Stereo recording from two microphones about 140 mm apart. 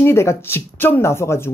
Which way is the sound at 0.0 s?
20° left (ahead or behind).